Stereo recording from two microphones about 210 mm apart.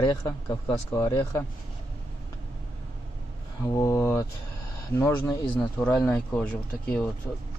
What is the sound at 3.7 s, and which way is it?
Speech, 15° left (ahead or behind).